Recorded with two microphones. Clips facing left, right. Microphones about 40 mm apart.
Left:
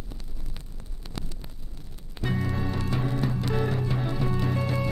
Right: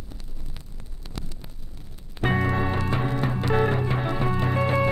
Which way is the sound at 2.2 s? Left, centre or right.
Right.